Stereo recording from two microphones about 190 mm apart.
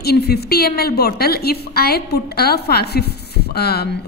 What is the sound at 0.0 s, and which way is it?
Speech, 55° left (ahead or behind).